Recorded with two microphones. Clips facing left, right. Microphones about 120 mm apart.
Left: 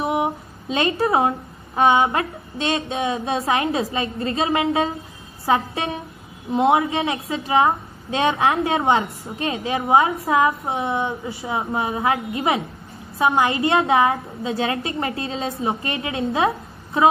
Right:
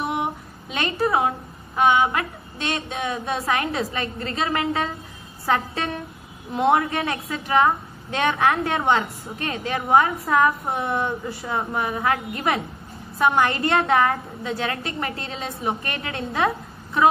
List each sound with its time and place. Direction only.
0.2 s music: 25° left (ahead or behind)
1.8 s a woman's voice: 25° left (ahead or behind)
9.6 s a woman's voice: 15° left (ahead or behind)
10.8 s speech: centre (ahead or behind)
11.4 s a woman's voice: 25° left (ahead or behind)